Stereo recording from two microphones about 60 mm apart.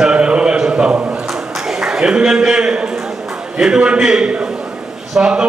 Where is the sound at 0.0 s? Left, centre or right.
Centre.